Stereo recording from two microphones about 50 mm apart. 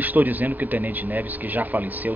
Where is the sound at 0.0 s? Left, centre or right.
Right.